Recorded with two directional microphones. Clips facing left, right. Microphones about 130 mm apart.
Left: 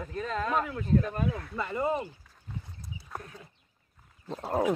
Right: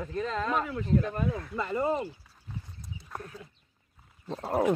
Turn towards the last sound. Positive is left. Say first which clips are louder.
# right 1 dB
turn(degrees=0)  # may be behind; listen again after turning